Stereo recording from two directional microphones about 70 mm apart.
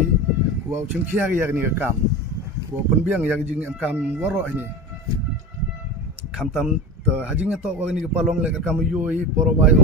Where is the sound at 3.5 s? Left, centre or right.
Centre.